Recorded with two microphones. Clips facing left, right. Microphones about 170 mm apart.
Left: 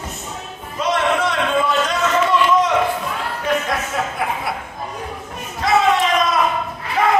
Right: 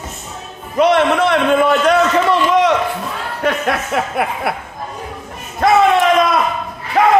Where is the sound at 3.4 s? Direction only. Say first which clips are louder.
Right 4 dB; 70° right (ahead or behind).